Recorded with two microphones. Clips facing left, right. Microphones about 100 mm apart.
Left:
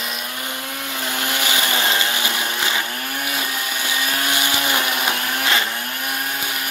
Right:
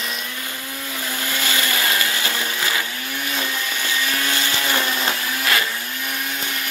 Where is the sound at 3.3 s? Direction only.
15° left (ahead or behind).